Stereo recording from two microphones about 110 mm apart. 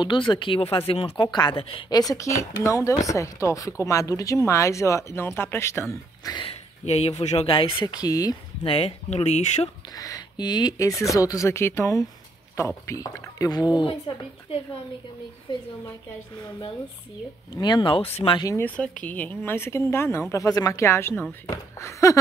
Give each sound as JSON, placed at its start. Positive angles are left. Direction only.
{"t": 0.3, "sound": "speech", "side_deg": 50}
{"t": 1.1, "sound": "a woman's voice", "side_deg": 40}
{"t": 1.6, "sound": "speech", "side_deg": 55}
{"t": 1.9, "sound": "speech", "side_deg": 35}
{"t": 6.3, "sound": "speech", "side_deg": 60}
{"t": 7.8, "sound": "speech", "side_deg": 35}
{"t": 8.6, "sound": "speech", "side_deg": 60}
{"t": 9.9, "sound": "speech", "side_deg": 35}
{"t": 13.7, "sound": "a woman's voice", "side_deg": 50}
{"t": 17.6, "sound": "a woman's voice", "side_deg": 40}
{"t": 18.1, "sound": "speech", "side_deg": 60}
{"t": 18.8, "sound": "speech", "side_deg": 15}